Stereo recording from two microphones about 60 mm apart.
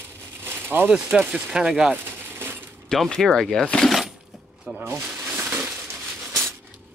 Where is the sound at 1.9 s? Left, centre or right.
Right.